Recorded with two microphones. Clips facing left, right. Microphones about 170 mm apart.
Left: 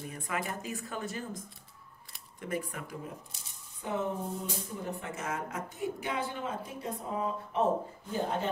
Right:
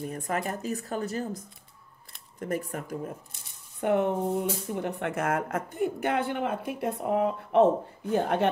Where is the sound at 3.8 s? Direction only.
70° right (ahead or behind).